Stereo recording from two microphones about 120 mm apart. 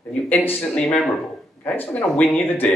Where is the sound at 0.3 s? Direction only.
15° left (ahead or behind).